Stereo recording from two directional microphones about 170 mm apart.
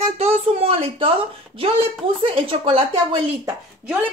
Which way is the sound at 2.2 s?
30° right (ahead or behind).